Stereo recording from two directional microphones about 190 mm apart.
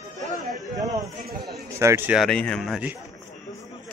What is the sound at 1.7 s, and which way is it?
Speech, 15° right (ahead or behind).